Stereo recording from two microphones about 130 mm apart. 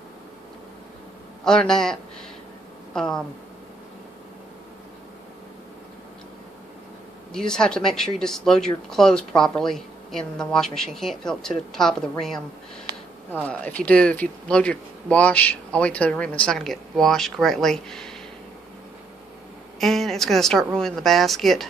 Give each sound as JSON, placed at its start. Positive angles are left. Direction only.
{"t": 1.4, "sound": "speech", "side_deg": 5}
{"t": 7.3, "sound": "speech", "side_deg": 5}
{"t": 19.8, "sound": "speech", "side_deg": 0}